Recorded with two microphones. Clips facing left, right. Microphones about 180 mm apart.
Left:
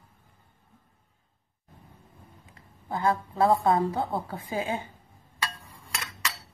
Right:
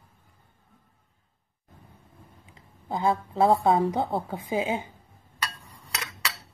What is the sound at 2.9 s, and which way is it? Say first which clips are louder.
A woman's voice: right 1 dB; 20° right (ahead or behind).